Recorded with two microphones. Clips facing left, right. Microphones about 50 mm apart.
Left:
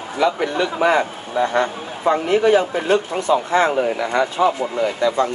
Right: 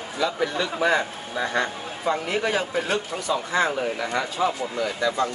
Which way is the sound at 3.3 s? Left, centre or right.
Left.